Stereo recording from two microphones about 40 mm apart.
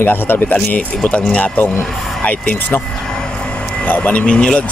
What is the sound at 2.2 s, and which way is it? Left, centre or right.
Speech, left.